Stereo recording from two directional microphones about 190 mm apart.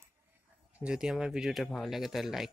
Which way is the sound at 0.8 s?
5° right (ahead or behind).